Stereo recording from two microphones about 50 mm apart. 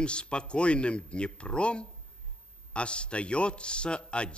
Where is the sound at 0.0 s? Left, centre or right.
Left.